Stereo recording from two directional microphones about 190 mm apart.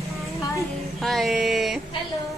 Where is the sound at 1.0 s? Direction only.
Centre (ahead or behind).